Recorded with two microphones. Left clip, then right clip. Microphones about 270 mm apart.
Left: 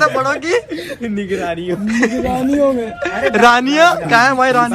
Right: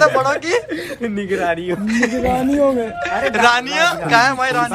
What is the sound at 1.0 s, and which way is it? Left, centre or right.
A man's voice, centre.